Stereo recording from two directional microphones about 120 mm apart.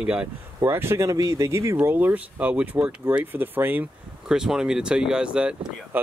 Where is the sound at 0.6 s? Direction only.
20° right (ahead or behind).